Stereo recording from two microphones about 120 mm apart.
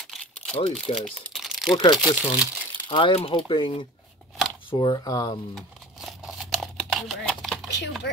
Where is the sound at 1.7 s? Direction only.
40° left (ahead or behind).